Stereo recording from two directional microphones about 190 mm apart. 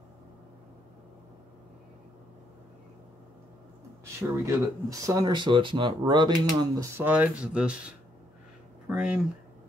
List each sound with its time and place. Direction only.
4.0 s speech: 15° right (ahead or behind)
7.0 s speech: 10° right (ahead or behind)
8.8 s a sound: 5° right (ahead or behind)